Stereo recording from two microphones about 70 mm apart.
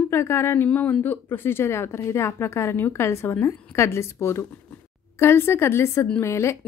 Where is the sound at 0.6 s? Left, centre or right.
Left.